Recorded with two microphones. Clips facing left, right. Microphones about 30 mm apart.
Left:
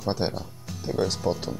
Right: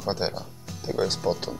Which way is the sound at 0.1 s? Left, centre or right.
Right.